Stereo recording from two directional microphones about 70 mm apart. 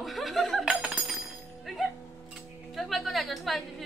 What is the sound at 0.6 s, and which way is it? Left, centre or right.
Speech, centre.